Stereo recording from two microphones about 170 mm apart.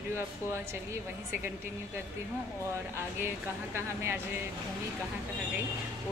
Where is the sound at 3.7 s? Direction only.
15° right (ahead or behind).